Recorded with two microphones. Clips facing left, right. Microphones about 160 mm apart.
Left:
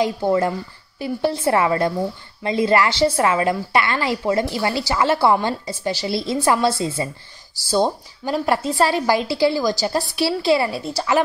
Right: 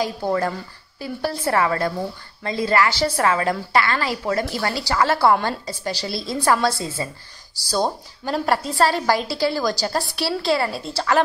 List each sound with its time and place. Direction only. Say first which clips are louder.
0.0 s a woman's voice: left 4 dB; 20° left (ahead or behind)
8.3 s a woman's voice: left 2 dB; 15° left (ahead or behind)